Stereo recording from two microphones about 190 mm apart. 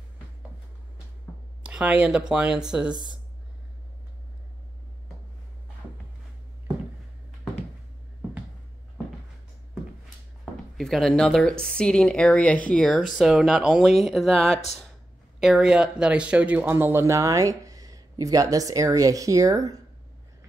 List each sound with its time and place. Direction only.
1.6 s speech: 5° right (ahead or behind)
2.9 s speech: 25° right (ahead or behind)
10.8 s speech: centre (ahead or behind); by 19.8 s 20° right (ahead or behind)